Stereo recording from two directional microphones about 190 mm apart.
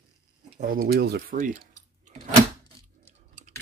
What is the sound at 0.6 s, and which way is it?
Speech, 45° right (ahead or behind).